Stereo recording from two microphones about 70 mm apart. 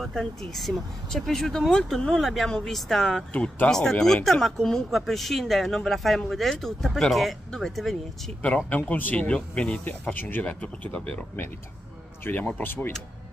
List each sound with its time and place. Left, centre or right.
0.0 s speech: centre
8.4 s speech: centre
12.3 s speech: left